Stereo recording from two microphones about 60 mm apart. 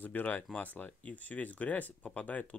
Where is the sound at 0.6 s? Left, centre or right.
Left.